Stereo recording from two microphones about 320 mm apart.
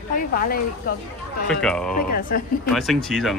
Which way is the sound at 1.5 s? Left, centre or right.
Centre.